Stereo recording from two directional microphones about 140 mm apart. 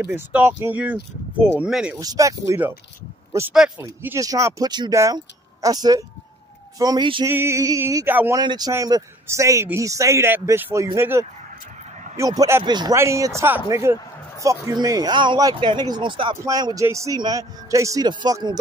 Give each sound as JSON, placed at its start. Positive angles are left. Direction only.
{"t": 0.0, "sound": "speech", "side_deg": -15}
{"t": 2.0, "sound": "a man's voice", "side_deg": -25}
{"t": 3.5, "sound": "speech", "side_deg": -5}
{"t": 3.8, "sound": "a man's voice", "side_deg": -20}
{"t": 8.4, "sound": "a man's voice", "side_deg": -30}
{"t": 16.4, "sound": "a man's voice", "side_deg": -25}